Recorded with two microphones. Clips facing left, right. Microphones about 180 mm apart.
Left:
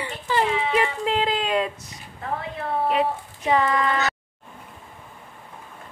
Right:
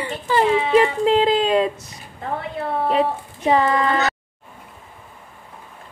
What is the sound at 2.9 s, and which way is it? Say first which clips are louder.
A child's voice: right 3 dB; 35° right (ahead or behind).